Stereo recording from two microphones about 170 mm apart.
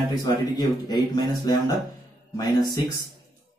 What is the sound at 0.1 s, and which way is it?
Speech, 25° left (ahead or behind).